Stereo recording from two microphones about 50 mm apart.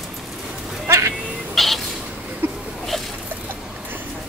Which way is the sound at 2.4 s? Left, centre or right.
Right.